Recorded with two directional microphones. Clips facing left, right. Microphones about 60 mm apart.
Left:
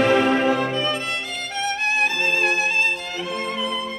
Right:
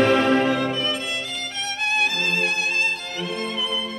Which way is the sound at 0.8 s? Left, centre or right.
Left.